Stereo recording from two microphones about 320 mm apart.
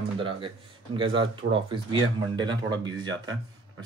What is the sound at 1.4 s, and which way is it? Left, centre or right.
Speech, right.